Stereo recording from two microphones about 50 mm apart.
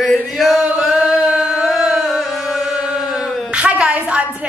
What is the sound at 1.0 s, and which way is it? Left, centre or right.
Chant, centre.